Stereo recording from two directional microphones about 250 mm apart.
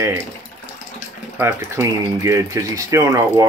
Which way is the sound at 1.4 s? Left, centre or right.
Centre.